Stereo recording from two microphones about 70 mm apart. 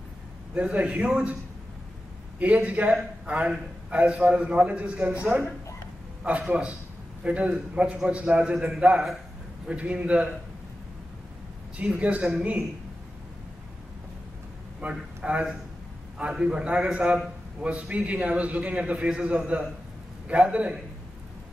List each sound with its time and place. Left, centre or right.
0.6 s a man's voice: centre
2.3 s a man's voice: centre
6.2 s a man's voice: centre
12.0 s a man's voice: centre
14.8 s a man's voice: centre